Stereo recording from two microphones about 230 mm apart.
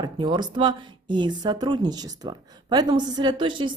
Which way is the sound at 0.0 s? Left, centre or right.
Centre.